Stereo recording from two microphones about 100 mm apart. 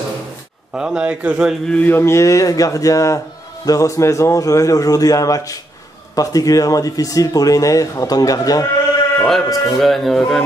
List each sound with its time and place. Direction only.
0.7 s a man's voice: 10° right (ahead or behind)
1.7 s speech: 10° left (ahead or behind)
2.0 s speech: 30° left (ahead or behind)
9.2 s speech: centre (ahead or behind)